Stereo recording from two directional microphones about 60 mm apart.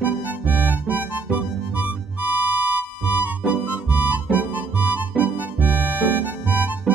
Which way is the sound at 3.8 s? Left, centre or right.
Right.